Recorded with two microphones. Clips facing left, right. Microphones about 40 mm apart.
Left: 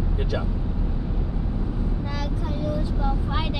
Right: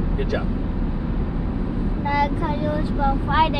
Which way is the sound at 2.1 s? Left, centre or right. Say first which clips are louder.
Right 9 dB; right.